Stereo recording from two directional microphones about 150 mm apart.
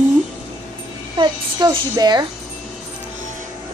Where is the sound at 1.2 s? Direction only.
25° right (ahead or behind).